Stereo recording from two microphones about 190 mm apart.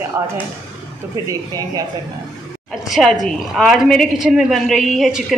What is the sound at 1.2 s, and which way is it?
Speech, 20° right (ahead or behind).